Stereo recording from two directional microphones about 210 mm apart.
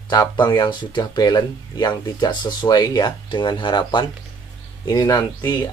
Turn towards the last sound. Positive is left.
turn(degrees=20)  # may be behind; listen again after turning